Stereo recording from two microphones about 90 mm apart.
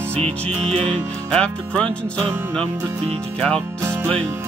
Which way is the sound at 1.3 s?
10° left (ahead or behind).